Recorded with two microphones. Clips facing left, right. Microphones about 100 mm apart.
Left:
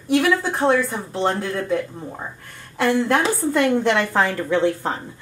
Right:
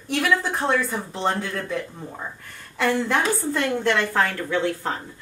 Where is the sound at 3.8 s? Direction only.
15° left (ahead or behind).